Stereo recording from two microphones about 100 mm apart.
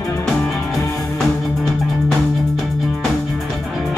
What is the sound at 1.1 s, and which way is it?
Music, centre (ahead or behind).